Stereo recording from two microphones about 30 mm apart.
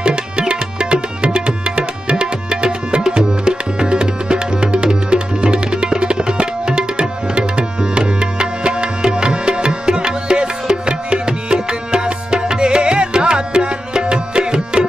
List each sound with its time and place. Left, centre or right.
0.0 s music: right